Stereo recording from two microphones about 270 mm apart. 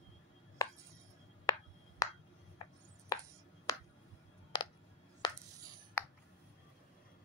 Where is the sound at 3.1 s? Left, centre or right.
Centre.